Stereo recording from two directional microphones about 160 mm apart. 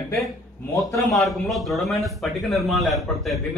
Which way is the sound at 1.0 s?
Centre (ahead or behind).